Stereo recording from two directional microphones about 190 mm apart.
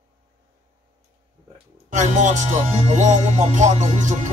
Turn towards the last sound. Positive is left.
turn(degrees=-40)  # may be behind; listen again after turning